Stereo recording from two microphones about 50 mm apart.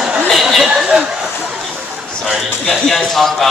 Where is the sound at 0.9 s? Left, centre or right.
Centre.